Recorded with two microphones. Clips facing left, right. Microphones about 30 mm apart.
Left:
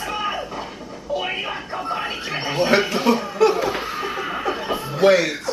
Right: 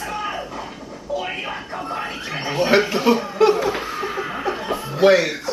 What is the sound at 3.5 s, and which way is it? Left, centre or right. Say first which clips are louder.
Chuckle: right 1 dB; centre.